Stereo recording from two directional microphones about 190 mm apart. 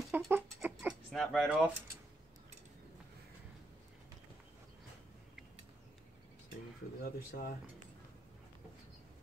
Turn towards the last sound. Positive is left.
turn(degrees=50)  # may be behind; listen again after turning